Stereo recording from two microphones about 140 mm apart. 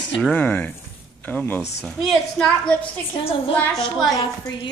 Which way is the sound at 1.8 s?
5° left (ahead or behind).